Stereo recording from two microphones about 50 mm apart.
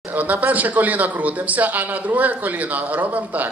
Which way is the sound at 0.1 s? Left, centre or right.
Right.